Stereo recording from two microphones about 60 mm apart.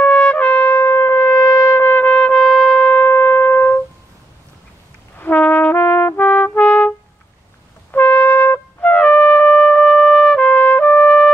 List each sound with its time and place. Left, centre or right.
0.0 s trumpet: left
2.0 s trumpet: centre; by 3.8 s left
5.1 s brass instrument: left
7.9 s brass instrument: left
8.9 s music: left
10.4 s trumpet: left